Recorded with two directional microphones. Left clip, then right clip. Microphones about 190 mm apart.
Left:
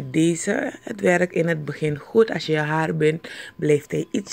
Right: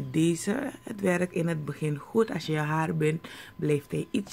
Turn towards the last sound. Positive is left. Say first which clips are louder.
# left 7 dB
turn(degrees=25)  # may be behind; listen again after turning